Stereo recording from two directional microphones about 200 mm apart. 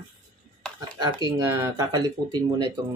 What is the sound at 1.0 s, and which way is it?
Speech, 20° right (ahead or behind).